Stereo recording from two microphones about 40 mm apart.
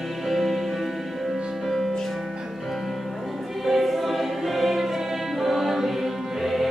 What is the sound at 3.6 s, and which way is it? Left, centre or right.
Choir, centre.